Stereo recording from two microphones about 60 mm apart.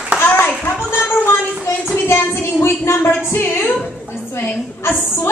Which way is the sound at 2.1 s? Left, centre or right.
Left.